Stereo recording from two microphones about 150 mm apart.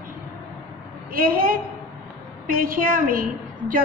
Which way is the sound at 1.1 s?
70° right (ahead or behind).